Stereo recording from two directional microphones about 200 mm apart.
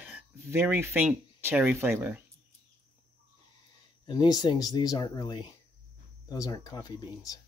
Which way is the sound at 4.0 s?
20° left (ahead or behind).